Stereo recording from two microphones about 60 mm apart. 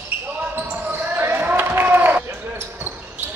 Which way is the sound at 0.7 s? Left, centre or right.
Right.